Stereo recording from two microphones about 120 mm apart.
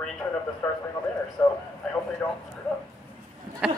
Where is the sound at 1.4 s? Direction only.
25° left (ahead or behind).